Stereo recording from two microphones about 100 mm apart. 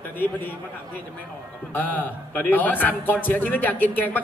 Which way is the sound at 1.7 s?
20° left (ahead or behind).